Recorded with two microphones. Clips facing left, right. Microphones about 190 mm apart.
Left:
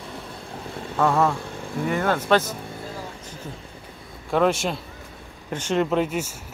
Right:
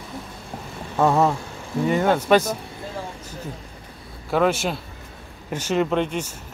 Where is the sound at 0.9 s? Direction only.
20° right (ahead or behind).